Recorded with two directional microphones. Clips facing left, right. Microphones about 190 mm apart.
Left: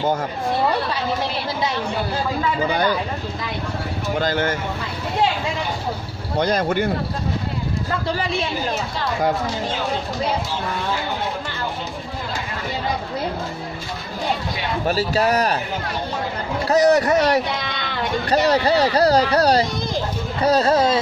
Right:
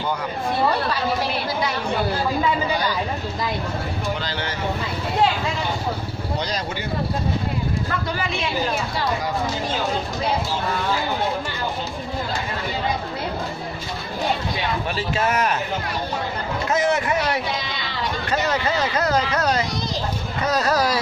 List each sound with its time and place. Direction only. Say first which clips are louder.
4.2 s speech: left 8 dB; 50° left (ahead or behind)
6.3 s speech: left 9 dB; 55° left (ahead or behind)
8.1 s speech: left 3 dB; 35° left (ahead or behind)
14.9 s speech: left 7 dB; 40° left (ahead or behind)
16.6 s speech: left 6 dB; 40° left (ahead or behind); by 18.1 s 55° left (ahead or behind)
18.3 s speech: left 6 dB; 35° left (ahead or behind)